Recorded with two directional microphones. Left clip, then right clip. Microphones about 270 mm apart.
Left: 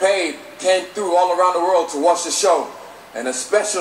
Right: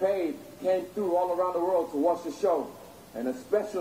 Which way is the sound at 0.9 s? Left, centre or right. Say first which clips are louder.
Left 10 dB; left.